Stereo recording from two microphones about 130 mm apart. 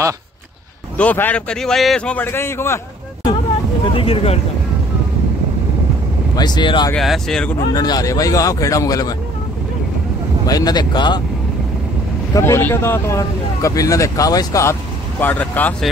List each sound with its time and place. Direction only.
0.9 s a man's voice: 15° left (ahead or behind)
3.9 s speech: 45° left (ahead or behind)
6.3 s speech: 35° left (ahead or behind)
7.0 s speech: 5° left (ahead or behind)
7.7 s speech: 30° left (ahead or behind)
10.4 s speech: 30° left (ahead or behind)
12.4 s speech: 20° left (ahead or behind)